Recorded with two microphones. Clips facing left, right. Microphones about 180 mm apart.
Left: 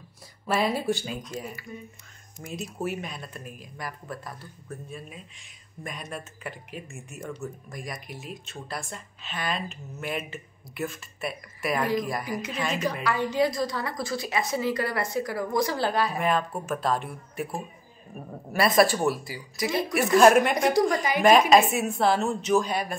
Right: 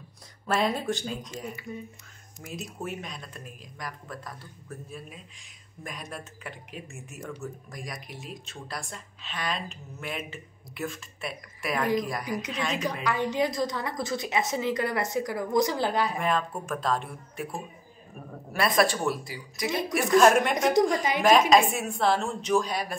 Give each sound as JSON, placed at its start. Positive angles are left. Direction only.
{"t": 0.5, "sound": "a woman's voice", "side_deg": 5}
{"t": 13.0, "sound": "a woman's voice", "side_deg": -20}
{"t": 16.2, "sound": "a woman's voice", "side_deg": 5}